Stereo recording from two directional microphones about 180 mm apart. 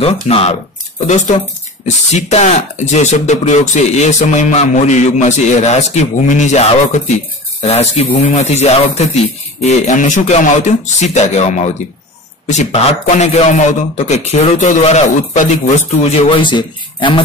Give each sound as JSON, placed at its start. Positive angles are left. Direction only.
{"t": 0.0, "sound": "speech", "side_deg": 35}